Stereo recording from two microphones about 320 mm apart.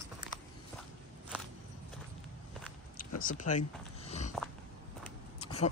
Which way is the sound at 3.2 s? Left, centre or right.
Left.